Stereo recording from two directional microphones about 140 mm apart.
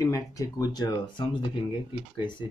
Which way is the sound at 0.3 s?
25° left (ahead or behind).